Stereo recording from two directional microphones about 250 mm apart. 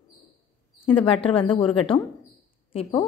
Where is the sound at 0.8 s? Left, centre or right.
Left.